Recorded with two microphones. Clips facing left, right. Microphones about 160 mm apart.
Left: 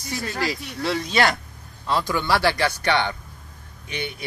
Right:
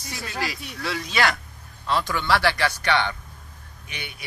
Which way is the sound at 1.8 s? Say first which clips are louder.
Left 1 dB; 15° left (ahead or behind).